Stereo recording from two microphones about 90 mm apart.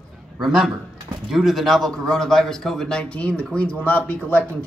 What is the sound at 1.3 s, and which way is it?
A man's voice, centre (ahead or behind).